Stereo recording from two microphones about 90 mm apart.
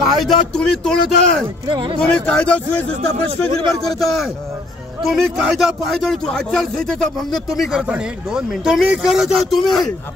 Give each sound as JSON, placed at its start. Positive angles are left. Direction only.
{"t": 0.0, "sound": "speech", "side_deg": 0}
{"t": 1.7, "sound": "speech", "side_deg": -65}
{"t": 2.0, "sound": "speech", "side_deg": 10}
{"t": 3.8, "sound": "speech", "side_deg": 0}